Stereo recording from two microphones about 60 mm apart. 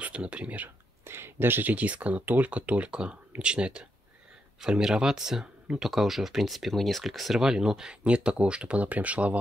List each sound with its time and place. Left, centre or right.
0.0 s speech: centre
1.0 s speech: right